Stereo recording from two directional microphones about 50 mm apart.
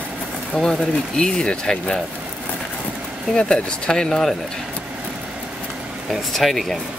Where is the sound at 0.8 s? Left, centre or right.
Centre.